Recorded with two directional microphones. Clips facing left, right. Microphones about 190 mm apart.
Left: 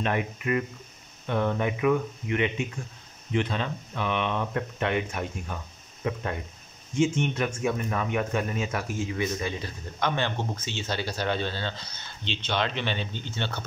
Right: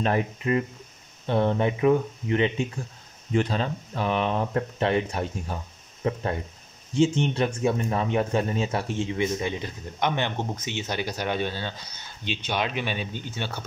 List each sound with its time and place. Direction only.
0.0 s speech: 30° right (ahead or behind); by 13.7 s 10° right (ahead or behind)